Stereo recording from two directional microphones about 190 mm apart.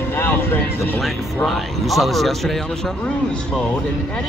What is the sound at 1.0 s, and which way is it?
Speech, centre (ahead or behind).